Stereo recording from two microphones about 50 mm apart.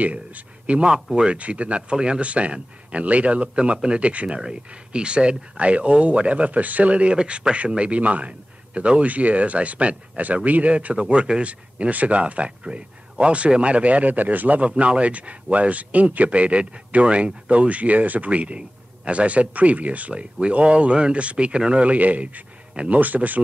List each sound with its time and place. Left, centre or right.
0.0 s speech: right